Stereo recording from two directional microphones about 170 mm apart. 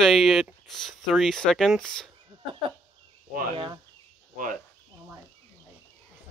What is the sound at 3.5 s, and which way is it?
Speech, 30° right (ahead or behind).